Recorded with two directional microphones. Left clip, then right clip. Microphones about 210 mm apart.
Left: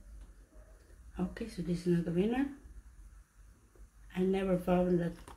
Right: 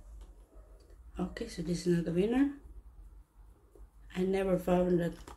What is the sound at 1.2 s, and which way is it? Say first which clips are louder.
Speech: right 2 dB; 5° right (ahead or behind).